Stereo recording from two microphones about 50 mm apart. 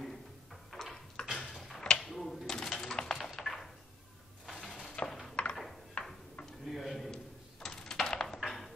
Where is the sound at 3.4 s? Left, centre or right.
Centre.